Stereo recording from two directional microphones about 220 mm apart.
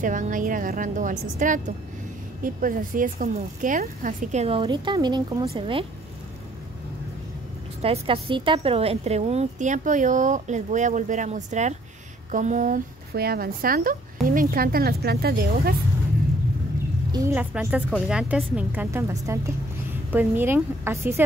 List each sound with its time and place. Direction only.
0.0 s a woman's voice: 35° right (ahead or behind); by 5.5 s 20° right (ahead or behind)
7.8 s a woman's voice: 25° right (ahead or behind); by 15.7 s 45° right (ahead or behind)
17.1 s a woman's voice: 10° right (ahead or behind)